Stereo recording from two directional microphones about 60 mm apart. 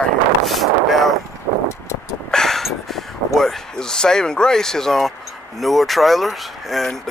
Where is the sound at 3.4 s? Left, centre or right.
Centre.